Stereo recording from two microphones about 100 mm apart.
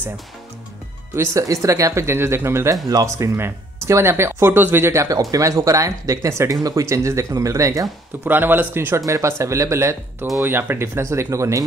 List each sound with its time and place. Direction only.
1.1 s speech: 30° right (ahead or behind)
8.3 s speech: 20° right (ahead or behind)